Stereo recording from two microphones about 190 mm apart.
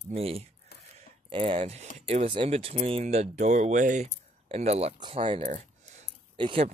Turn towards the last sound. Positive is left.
turn(degrees=-25)  # may be behind; listen again after turning